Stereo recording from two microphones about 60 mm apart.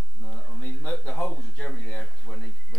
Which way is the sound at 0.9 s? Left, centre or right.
Centre.